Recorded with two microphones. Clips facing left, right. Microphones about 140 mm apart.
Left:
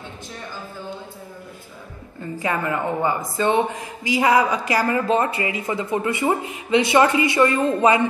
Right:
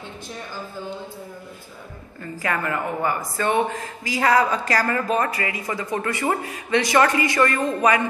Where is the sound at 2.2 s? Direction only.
20° left (ahead or behind).